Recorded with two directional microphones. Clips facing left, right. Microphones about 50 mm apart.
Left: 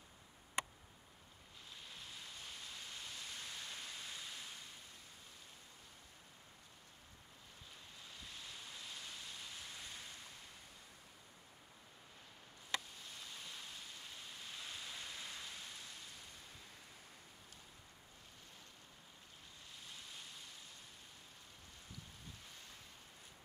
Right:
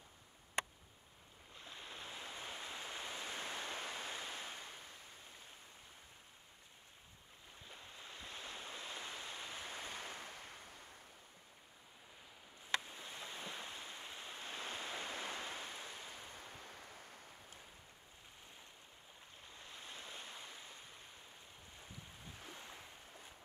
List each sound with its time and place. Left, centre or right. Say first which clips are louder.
1.6 s waves: right 4 dB; right
8.0 s waves: right 4 dB; right
12.8 s a sound: right 4 dB; right
19.6 s waves: right 4 dB; right
22.4 s waves: right 5 dB; right